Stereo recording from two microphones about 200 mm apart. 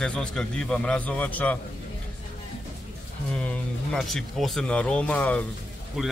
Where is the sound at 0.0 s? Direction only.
5° left (ahead or behind).